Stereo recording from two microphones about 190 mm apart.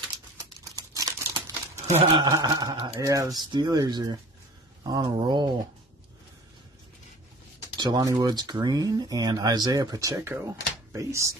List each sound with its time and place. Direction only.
0.9 s crumpling: 20° right (ahead or behind)
1.9 s speech: 30° right (ahead or behind)
2.2 s speech: 20° right (ahead or behind)
7.7 s speech: 20° right (ahead or behind)